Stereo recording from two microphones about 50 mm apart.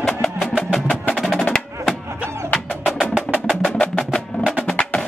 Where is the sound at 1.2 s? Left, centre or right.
Centre.